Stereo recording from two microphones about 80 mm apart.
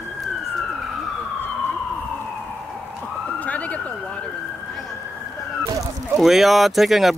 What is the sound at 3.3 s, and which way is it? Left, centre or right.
Police car, centre.